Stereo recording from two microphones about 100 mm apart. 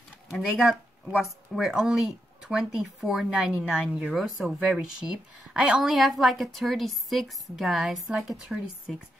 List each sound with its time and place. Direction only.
0.3 s a woman's voice: centre (ahead or behind)